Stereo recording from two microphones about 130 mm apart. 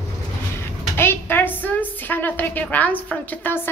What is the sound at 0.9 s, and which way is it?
A woman's voice, 15° left (ahead or behind).